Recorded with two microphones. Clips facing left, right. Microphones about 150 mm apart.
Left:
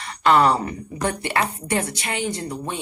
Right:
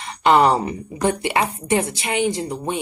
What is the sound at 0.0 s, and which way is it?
A woman's voice, 20° right (ahead or behind).